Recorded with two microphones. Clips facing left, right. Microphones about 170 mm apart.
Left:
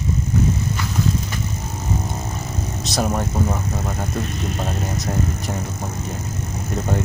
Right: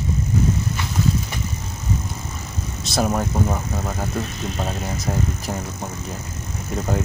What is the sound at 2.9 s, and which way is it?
Speech, centre (ahead or behind).